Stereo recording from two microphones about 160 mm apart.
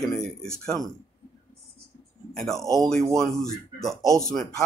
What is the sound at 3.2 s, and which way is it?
Speech, 5° left (ahead or behind).